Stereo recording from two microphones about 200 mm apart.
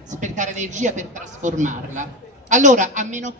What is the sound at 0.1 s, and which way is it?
A woman's voice, 40° right (ahead or behind).